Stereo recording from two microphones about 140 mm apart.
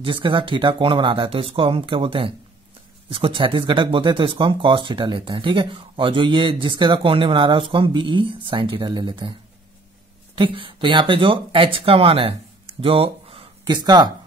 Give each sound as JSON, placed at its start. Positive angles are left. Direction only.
{"t": 0.0, "sound": "speech", "side_deg": -35}